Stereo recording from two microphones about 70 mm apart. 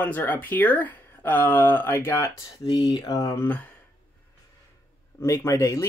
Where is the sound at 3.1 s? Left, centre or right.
Left.